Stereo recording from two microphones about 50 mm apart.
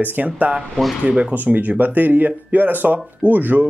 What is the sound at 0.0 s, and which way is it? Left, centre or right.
Speech, right.